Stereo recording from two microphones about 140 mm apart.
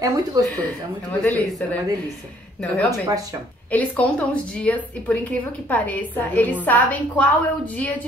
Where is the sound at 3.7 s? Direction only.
10° left (ahead or behind).